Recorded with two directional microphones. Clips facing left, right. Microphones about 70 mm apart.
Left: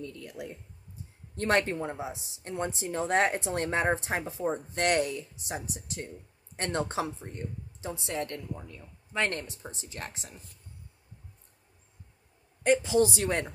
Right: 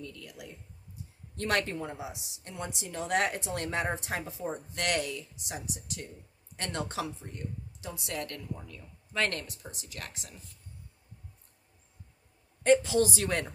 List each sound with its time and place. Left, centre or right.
0.0 s a woman's voice: left
12.6 s speech: centre